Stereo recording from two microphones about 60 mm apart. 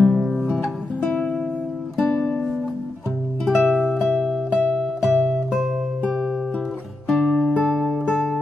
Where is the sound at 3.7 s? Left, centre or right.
Centre.